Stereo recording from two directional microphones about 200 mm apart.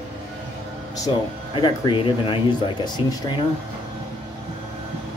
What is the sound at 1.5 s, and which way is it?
Speech, 25° left (ahead or behind).